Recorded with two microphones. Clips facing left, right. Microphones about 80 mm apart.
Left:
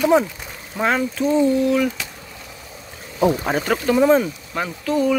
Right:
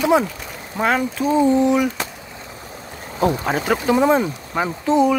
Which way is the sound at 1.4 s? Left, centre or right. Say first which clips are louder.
Right 2 dB; right.